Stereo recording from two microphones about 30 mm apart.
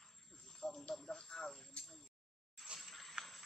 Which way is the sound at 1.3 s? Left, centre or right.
Left.